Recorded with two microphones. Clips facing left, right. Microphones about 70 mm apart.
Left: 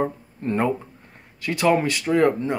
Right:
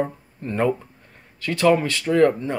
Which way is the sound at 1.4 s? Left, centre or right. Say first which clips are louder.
Right 1 dB; centre.